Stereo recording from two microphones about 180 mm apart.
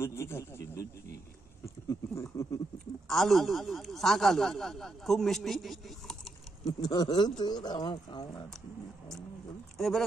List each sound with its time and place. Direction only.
0.0 s speech: 15° left (ahead or behind)
3.1 s speech: centre (ahead or behind)
6.6 s speech: 20° left (ahead or behind)
9.8 s speech: centre (ahead or behind)